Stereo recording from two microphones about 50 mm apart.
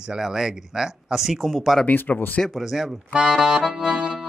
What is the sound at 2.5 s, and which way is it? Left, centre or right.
Speech, centre.